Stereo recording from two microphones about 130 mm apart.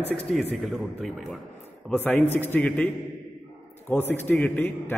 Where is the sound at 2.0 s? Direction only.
15° left (ahead or behind).